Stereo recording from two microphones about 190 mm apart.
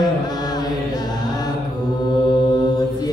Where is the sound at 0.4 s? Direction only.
20° left (ahead or behind).